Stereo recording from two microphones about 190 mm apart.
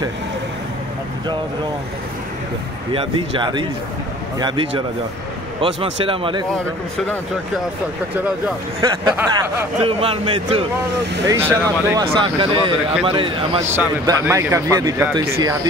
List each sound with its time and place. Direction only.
2.9 s speech: 30° right (ahead or behind)
9.3 s speech: 30° right (ahead or behind)
11.2 s speech: 15° right (ahead or behind)
12.1 s speech: 25° right (ahead or behind)
13.7 s speech: 15° right (ahead or behind)